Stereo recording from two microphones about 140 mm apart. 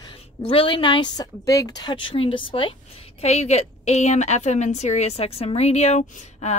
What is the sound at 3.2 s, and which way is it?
A woman's voice, 50° left (ahead or behind).